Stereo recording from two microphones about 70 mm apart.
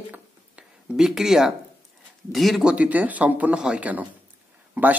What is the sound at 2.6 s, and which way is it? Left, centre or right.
Speech, centre.